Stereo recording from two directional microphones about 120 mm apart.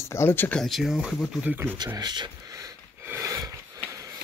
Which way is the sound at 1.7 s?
35° right (ahead or behind).